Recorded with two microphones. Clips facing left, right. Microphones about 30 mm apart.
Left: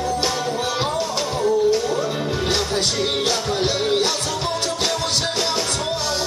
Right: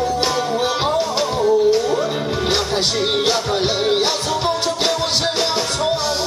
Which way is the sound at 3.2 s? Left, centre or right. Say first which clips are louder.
Right 3 dB; centre.